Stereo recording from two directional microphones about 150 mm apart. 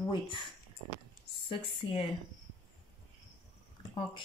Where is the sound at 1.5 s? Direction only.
35° left (ahead or behind).